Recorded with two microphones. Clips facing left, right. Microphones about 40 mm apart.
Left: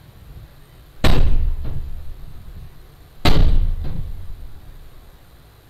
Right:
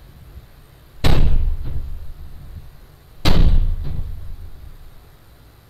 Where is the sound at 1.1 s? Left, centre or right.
Centre.